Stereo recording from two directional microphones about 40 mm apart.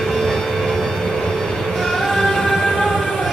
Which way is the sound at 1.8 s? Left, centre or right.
Centre.